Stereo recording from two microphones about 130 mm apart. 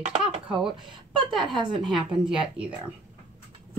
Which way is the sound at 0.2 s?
5° right (ahead or behind).